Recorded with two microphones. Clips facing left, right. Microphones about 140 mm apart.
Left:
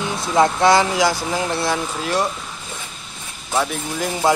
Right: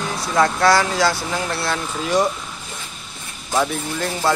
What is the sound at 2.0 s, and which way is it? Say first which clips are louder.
Speech: right 4 dB; centre (ahead or behind).